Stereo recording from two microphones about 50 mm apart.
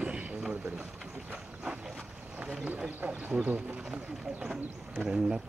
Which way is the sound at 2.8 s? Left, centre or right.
Right.